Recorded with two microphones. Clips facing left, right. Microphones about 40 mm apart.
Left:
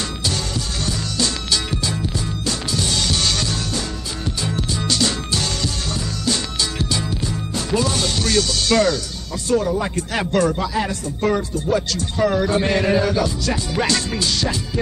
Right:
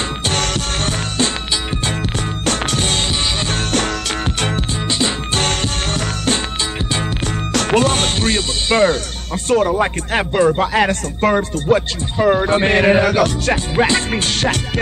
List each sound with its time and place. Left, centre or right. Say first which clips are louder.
0.2 s music: right 5 dB; right
2.4 s music: right 6 dB; right
3.1 s music: right 1 dB; right
3.4 s music: right 6 dB; right
4.8 s music: right 1 dB; right
5.3 s music: right 4 dB; right
7.5 s music: right 6 dB; right
9.5 s speech: right 4 dB; right
12.2 s speech: right 4 dB; right
13.7 s speech: right 5 dB; right
14.1 s speech: right 4 dB; right